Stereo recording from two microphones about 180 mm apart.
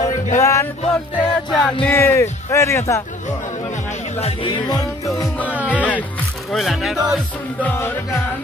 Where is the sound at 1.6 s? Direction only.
15° left (ahead or behind).